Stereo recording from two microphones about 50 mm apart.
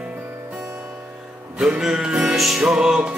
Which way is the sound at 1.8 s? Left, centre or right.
Centre.